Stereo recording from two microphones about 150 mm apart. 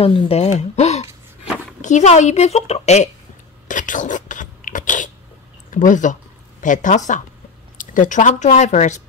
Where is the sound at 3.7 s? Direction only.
60° left (ahead or behind).